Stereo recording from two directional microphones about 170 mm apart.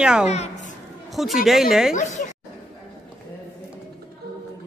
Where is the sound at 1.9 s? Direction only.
45° left (ahead or behind).